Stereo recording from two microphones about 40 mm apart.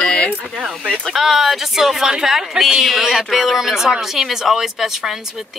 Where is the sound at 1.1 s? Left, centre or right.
Centre.